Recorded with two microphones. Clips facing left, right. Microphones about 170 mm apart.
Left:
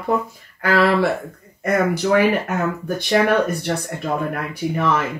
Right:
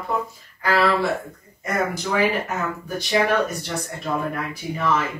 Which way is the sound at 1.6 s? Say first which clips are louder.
Left 6 dB; 65° left (ahead or behind).